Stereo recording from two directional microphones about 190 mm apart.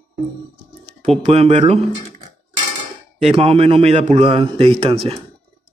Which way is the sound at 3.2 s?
30° right (ahead or behind).